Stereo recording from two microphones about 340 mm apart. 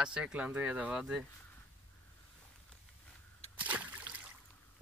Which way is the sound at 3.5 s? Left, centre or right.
Centre.